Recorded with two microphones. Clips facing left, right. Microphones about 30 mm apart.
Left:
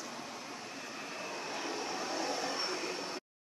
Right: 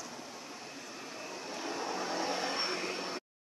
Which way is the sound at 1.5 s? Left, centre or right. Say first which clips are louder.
Right 2 dB; centre.